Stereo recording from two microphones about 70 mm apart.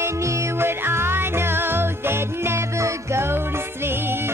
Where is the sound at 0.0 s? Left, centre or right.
Right.